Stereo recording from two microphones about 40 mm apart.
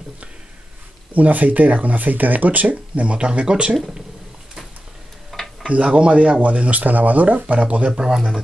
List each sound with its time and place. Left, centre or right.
1.1 s speech: right
2.7 s speech: right
5.3 s tick-tock: centre
5.7 s speech: right
8.0 s speech: centre